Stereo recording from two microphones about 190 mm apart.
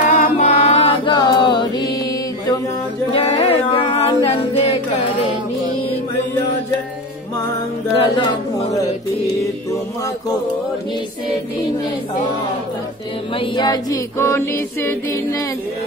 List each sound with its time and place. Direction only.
0.2 s chant: 35° left (ahead or behind); by 2.6 s 20° left (ahead or behind)
3.1 s a capella: 30° left (ahead or behind)
8.0 s music: 25° left (ahead or behind)
13.3 s music: 25° left (ahead or behind)